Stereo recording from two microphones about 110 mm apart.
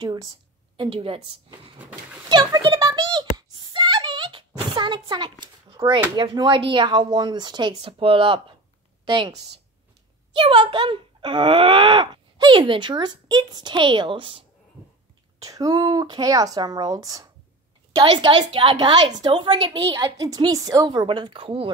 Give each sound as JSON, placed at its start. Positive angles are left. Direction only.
{"t": 0.0, "sound": "a woman's voice", "side_deg": -40}
{"t": 0.7, "sound": "a woman's voice", "side_deg": -55}
{"t": 1.8, "sound": "speech", "side_deg": -10}
{"t": 2.2, "sound": "a sound", "side_deg": -45}
{"t": 5.8, "sound": "speech", "side_deg": -25}
{"t": 6.1, "sound": "speech", "side_deg": -45}
{"t": 10.3, "sound": "speech", "side_deg": -50}
{"t": 15.4, "sound": "a woman's voice", "side_deg": -35}
{"t": 17.9, "sound": "speech", "side_deg": -45}
{"t": 19.9, "sound": "a woman's voice", "side_deg": -35}